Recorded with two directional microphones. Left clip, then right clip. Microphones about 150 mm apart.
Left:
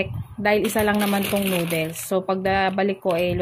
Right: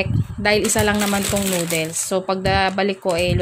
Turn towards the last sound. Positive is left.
turn(degrees=-20)  # may be behind; listen again after turning